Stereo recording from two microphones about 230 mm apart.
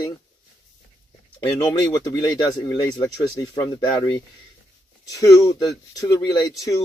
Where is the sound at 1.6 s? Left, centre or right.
Centre.